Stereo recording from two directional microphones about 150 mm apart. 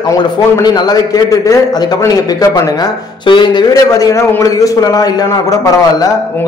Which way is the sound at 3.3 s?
30° left (ahead or behind).